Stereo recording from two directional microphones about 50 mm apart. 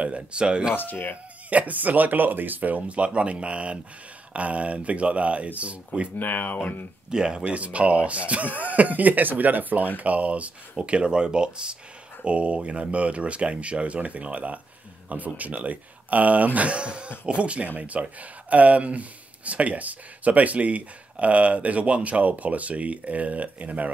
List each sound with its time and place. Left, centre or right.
0.0 s speech: right
1.5 s speech: right
6.1 s speech: left
7.1 s speech: centre